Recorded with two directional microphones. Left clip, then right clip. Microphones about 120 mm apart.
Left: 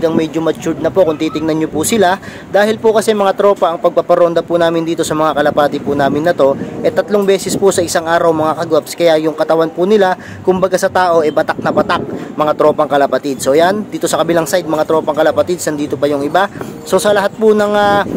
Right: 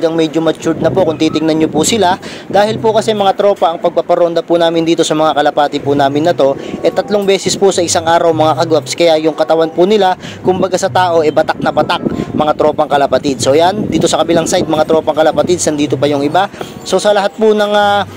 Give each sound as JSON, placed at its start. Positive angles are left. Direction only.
{"t": 0.0, "sound": "speech", "side_deg": 10}
{"t": 2.8, "sound": "speech", "side_deg": 10}
{"t": 16.9, "sound": "speech", "side_deg": -5}
{"t": 17.7, "sound": "speech", "side_deg": -15}